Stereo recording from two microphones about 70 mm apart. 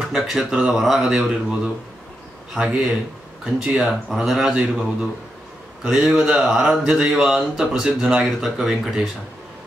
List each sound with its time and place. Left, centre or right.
0.1 s speech: centre
5.9 s speech: centre